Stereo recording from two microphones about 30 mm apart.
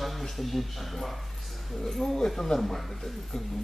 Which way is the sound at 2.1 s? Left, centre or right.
Centre.